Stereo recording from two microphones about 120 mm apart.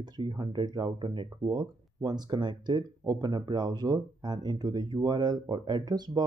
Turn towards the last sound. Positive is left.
turn(degrees=-35)  # may be behind; listen again after turning